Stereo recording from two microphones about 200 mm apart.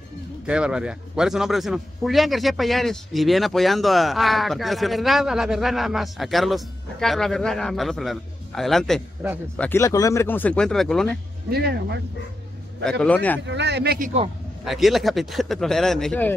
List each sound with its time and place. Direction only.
0.5 s a man's voice: 5° right (ahead or behind)
9.6 s speech: 10° left (ahead or behind)
11.5 s speech: 55° right (ahead or behind)
13.0 s speech: 5° left (ahead or behind)
13.5 s speech: 60° right (ahead or behind); by 14.2 s 40° right (ahead or behind)
14.6 s a man's voice: centre (ahead or behind)